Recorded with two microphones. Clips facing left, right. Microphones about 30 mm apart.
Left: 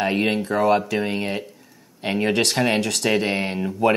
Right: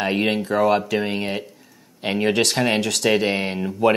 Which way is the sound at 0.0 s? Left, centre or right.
Centre.